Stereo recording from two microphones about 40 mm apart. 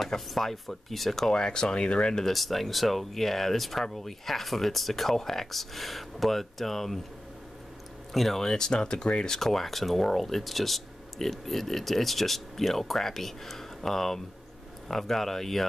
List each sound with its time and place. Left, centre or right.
0.3 s speech: centre
1.3 s speech: centre
2.2 s speech: centre
8.1 s speech: centre